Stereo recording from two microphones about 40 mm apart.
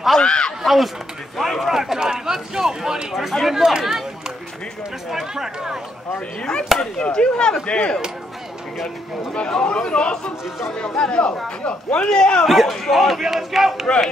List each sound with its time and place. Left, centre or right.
0.2 s speech: left
0.6 s a man's voice: centre
1.8 s speech: centre
5.3 s speech: centre
6.1 s speech: left
9.3 s speech: left
12.4 s a man's voice: centre